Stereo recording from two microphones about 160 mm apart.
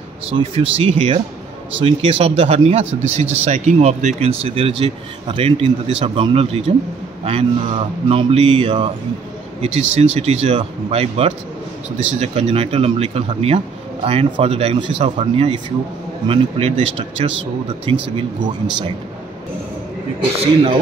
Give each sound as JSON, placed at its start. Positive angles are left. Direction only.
{"t": 0.3, "sound": "speech", "side_deg": -35}
{"t": 8.1, "sound": "speech", "side_deg": -35}
{"t": 20.2, "sound": "speech", "side_deg": -30}